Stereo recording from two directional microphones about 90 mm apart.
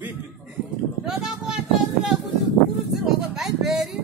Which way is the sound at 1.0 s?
10° right (ahead or behind).